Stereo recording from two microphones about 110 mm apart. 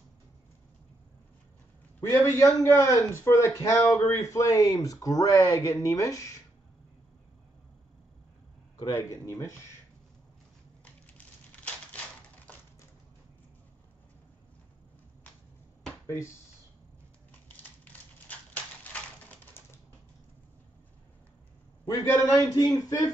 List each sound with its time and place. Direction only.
2.0 s a man's voice: 25° left (ahead or behind)
8.7 s a man's voice: 40° left (ahead or behind)
9.1 s a man's voice: 25° left (ahead or behind)
10.8 s a sound: 10° left (ahead or behind)
18.3 s a sound: 15° left (ahead or behind)
19.6 s typing: 20° left (ahead or behind)
21.8 s a man's voice: 25° left (ahead or behind)